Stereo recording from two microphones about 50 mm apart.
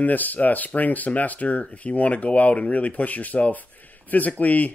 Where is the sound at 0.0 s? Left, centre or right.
Left.